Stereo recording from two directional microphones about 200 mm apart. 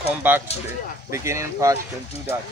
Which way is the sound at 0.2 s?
10° right (ahead or behind).